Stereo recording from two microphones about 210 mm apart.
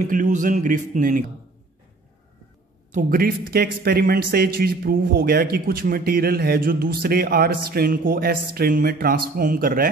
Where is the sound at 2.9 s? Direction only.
40° right (ahead or behind).